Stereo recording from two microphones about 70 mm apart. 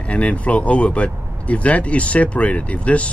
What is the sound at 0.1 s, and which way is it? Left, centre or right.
Speech, centre.